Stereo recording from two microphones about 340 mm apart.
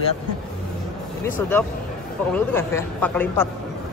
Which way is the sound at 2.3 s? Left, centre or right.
Centre.